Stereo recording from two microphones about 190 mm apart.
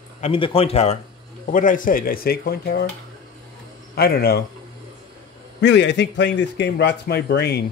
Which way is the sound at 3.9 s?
55° left (ahead or behind).